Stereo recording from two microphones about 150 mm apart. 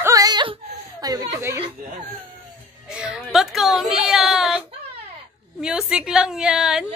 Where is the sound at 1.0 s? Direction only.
25° right (ahead or behind).